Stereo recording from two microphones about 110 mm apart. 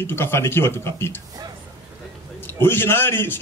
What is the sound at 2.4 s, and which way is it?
Speech, 20° left (ahead or behind).